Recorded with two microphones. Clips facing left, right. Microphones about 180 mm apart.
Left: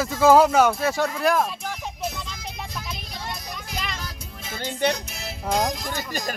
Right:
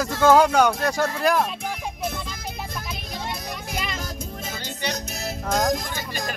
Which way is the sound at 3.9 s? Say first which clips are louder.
Right 5 dB; 45° right (ahead or behind).